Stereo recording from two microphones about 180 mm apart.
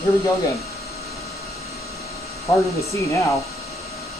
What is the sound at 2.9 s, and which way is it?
Speech, 15° left (ahead or behind).